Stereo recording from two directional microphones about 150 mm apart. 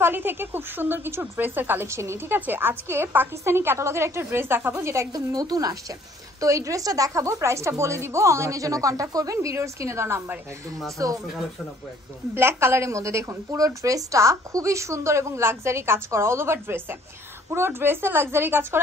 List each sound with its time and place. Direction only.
0.0 s a woman's voice: 15° right (ahead or behind)
12.4 s a woman's voice: 15° right (ahead or behind)